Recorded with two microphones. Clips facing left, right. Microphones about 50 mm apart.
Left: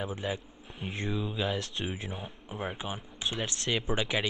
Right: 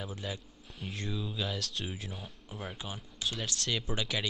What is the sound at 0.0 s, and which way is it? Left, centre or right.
Speech, left.